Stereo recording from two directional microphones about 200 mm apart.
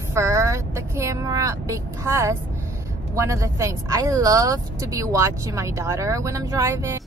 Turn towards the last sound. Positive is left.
turn(degrees=-15)  # may be behind; listen again after turning